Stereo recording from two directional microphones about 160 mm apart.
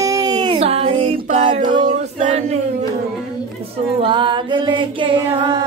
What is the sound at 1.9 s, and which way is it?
Choir, 50° right (ahead or behind).